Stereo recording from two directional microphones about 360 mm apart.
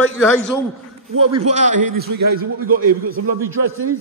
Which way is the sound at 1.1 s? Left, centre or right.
Right.